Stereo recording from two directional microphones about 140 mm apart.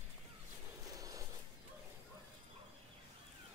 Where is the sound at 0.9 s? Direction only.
25° right (ahead or behind).